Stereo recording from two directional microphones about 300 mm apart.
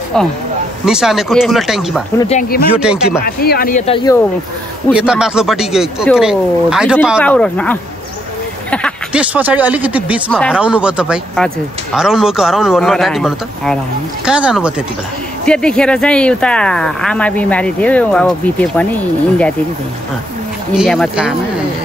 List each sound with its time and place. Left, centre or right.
0.8 s speech: centre
2.1 s speech: left
2.7 s speech: centre
3.3 s speech: left; by 4.2 s centre
4.9 s speech: centre
20.7 s speech: centre